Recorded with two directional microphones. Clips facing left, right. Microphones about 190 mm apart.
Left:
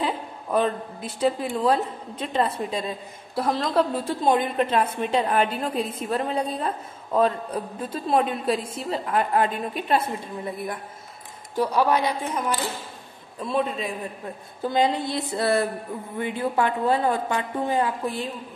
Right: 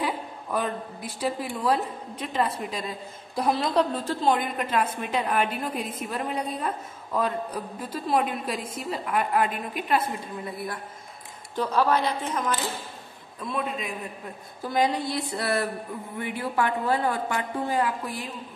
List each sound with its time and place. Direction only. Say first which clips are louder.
0.0 s a woman's voice: left 2 dB; 25° left (ahead or behind)
3.3 s a woman's voice: left 1 dB; centre (ahead or behind)
3.9 s a woman's voice: left 2 dB; 15° left (ahead or behind)
11.5 s speech: left 2 dB; 10° left (ahead or behind)
13.5 s a man's voice: left 5 dB; 30° left (ahead or behind)